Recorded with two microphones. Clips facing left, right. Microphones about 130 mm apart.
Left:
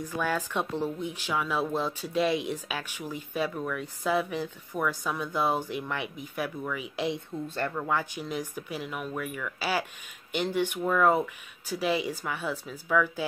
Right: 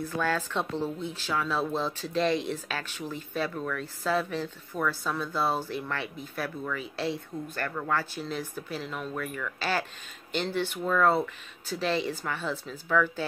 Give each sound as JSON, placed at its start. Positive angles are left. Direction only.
{"t": 0.0, "sound": "speech", "side_deg": 10}